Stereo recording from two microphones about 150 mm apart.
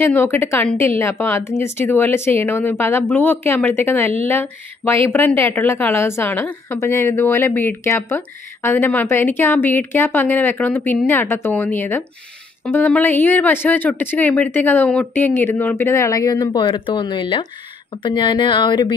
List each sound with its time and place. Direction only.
0.0 s speech: 15° left (ahead or behind); by 18.9 s 30° left (ahead or behind)